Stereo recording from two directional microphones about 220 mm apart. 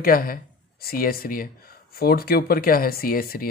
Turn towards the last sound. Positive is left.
turn(degrees=40)  # may be behind; listen again after turning